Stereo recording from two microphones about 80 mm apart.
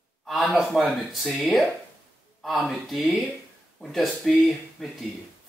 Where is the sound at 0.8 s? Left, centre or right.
Centre.